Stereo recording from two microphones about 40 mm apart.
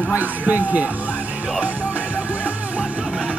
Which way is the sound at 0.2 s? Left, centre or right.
Right.